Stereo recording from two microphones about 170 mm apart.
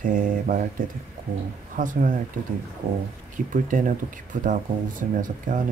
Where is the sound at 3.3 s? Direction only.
50° right (ahead or behind).